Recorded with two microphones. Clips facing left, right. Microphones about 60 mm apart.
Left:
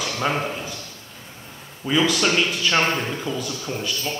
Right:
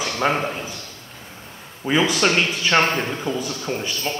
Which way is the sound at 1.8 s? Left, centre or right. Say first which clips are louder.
Right 1 dB; right.